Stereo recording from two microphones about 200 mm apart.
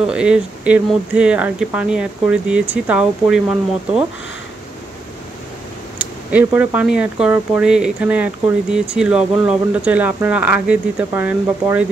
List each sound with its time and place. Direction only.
0.0 s speech: 5° right (ahead or behind)
5.9 s speech: 5° right (ahead or behind)